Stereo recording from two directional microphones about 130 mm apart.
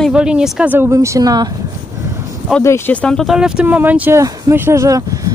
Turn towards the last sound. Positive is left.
turn(degrees=-25)  # may be behind; listen again after turning